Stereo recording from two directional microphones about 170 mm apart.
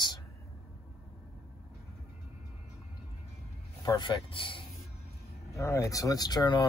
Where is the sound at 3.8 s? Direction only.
25° left (ahead or behind).